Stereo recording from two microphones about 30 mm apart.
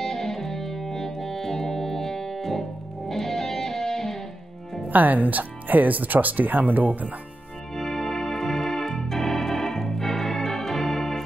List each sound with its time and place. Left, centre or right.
0.0 s music: centre
4.8 s speech: right
7.7 s organ: centre